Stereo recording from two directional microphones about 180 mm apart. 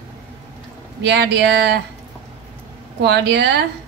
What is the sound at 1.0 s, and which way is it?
Speech, 70° right (ahead or behind).